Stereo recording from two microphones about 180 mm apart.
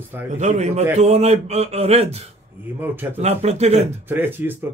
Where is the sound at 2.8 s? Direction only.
10° right (ahead or behind).